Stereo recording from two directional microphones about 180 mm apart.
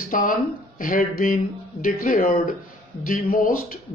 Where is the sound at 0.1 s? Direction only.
50° left (ahead or behind).